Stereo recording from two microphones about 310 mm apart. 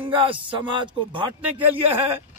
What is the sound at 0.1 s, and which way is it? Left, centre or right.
Speech, centre.